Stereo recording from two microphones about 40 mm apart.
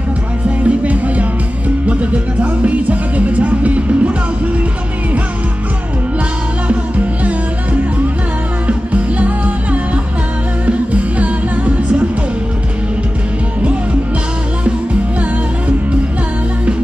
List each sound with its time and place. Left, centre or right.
0.7 s music: right
6.7 s music: right
8.6 s music: right